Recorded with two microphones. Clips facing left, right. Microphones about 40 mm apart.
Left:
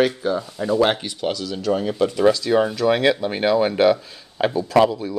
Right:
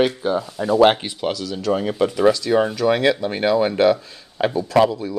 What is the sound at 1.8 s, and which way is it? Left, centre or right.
Speech, centre.